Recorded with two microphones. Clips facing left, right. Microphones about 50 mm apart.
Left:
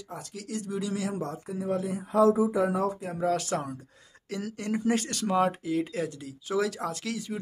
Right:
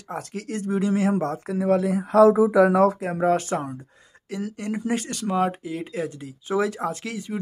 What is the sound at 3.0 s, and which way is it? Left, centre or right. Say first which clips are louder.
Speech: right 7 dB; right.